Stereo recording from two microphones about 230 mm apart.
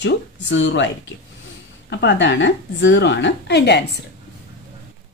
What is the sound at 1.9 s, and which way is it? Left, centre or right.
Speech, left.